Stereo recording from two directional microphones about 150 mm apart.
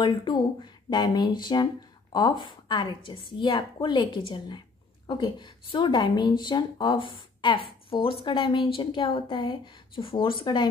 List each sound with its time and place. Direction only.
0.0 s a woman's voice: 30° left (ahead or behind)